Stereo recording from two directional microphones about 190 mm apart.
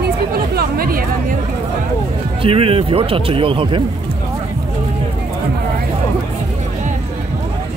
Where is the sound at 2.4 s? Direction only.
30° right (ahead or behind).